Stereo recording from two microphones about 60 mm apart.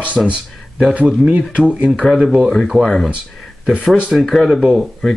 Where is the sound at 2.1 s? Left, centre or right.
Centre.